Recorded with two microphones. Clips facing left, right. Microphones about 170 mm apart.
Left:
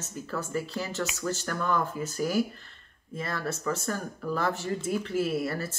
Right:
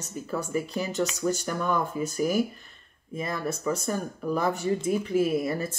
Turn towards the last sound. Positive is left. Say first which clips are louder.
# right 3 dB
turn(degrees=-15)  # may be behind; listen again after turning